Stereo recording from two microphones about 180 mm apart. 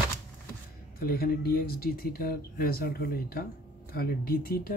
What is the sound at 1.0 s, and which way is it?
Speech, 55° left (ahead or behind).